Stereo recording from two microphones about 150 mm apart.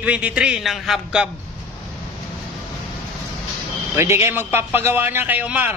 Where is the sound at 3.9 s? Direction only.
20° right (ahead or behind).